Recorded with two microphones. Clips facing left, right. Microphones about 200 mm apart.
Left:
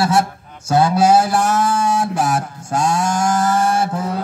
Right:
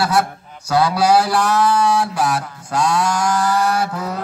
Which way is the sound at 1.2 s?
45° left (ahead or behind).